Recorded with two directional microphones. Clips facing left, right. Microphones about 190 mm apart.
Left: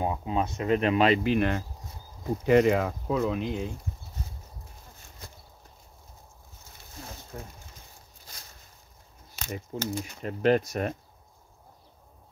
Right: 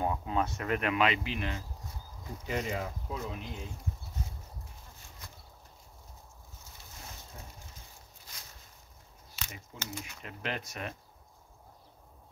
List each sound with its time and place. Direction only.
0.0 s speech: 20° left (ahead or behind)
1.2 s speech: 55° left (ahead or behind)
2.4 s speech: 70° left (ahead or behind); by 3.5 s 90° left
5.2 s a sound: 30° left (ahead or behind)
7.3 s speech: 75° left (ahead or behind)
9.3 s speech: 40° left (ahead or behind)